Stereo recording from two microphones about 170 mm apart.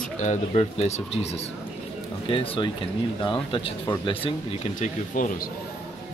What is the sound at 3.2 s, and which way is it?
Speech, 30° left (ahead or behind).